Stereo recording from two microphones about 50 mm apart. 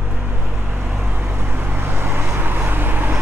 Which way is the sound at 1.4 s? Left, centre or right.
Right.